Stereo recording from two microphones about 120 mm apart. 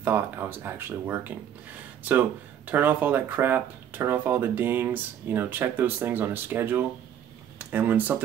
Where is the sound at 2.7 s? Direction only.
15° right (ahead or behind).